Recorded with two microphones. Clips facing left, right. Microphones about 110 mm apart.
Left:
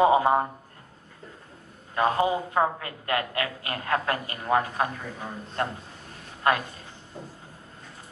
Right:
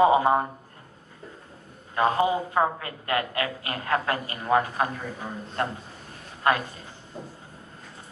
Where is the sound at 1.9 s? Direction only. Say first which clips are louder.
Right 1 dB; 25° right (ahead or behind).